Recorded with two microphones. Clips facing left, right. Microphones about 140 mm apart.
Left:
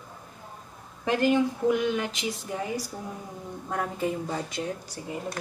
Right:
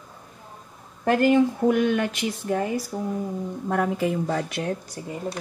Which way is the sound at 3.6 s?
85° right.